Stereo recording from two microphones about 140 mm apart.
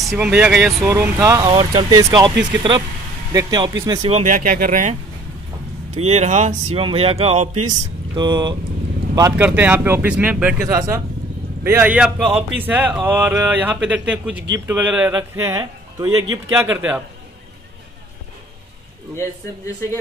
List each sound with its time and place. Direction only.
0.0 s speech: 5° right (ahead or behind)
0.8 s speech: 15° right (ahead or behind)
4.1 s speech: 65° right (ahead or behind)
5.9 s speech: 50° right (ahead or behind)
6.8 s speech: 40° right (ahead or behind)
8.1 s speech: 30° right (ahead or behind)
9.4 s speech: 15° right (ahead or behind)
10.7 s speech: 20° right (ahead or behind)
19.1 s a man's voice: 20° left (ahead or behind)